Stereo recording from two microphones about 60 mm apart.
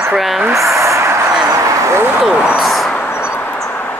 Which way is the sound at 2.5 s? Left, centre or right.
Centre.